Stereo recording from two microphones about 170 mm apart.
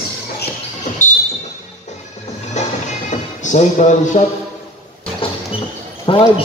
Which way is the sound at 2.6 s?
45° left (ahead or behind).